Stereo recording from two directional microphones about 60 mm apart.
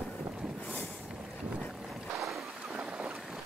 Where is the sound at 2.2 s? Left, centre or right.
Centre.